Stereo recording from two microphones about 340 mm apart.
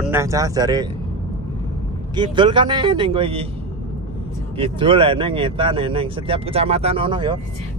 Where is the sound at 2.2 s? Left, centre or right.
Centre.